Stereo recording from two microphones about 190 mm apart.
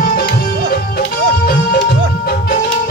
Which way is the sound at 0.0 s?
50° left (ahead or behind).